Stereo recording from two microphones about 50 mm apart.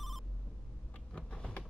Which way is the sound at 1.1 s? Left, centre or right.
Centre.